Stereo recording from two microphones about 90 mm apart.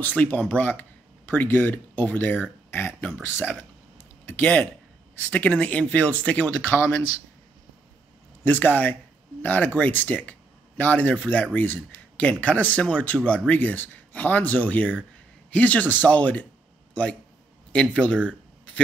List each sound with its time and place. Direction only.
0.0 s speech: 20° left (ahead or behind)
4.0 s a sound: 20° left (ahead or behind)
5.3 s speech: 15° left (ahead or behind)
8.5 s a man's voice: 20° left (ahead or behind)